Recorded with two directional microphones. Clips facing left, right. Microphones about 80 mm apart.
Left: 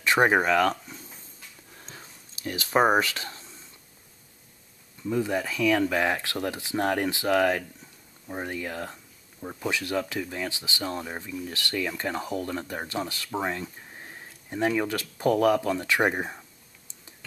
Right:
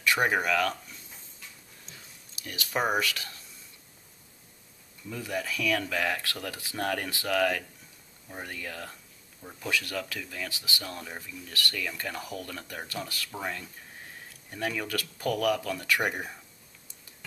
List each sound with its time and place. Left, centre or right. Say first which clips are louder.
0.0 s speech: left 5 dB; left
1.9 s a sound: left 5 dB; left
5.0 s speech: left 7 dB; left